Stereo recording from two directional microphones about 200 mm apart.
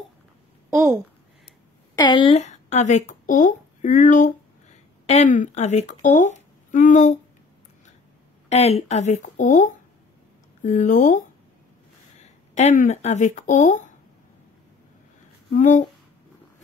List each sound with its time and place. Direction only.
0.7 s a woman's voice: 15° right (ahead or behind)
2.0 s speech: 20° left (ahead or behind); by 7.2 s 40° left (ahead or behind)
8.5 s speech: 30° left (ahead or behind)
15.5 s speech: 40° left (ahead or behind)